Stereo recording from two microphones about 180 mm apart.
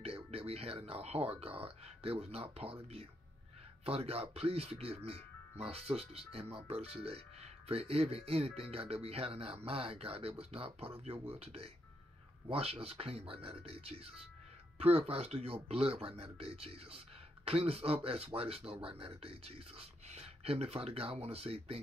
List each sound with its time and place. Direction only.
0.0 s speech: 35° right (ahead or behind)